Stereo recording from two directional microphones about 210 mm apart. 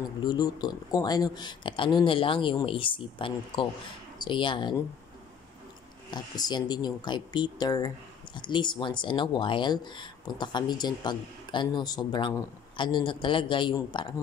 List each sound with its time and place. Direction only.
0.2 s speech: 20° left (ahead or behind)
6.1 s speech: 20° left (ahead or behind)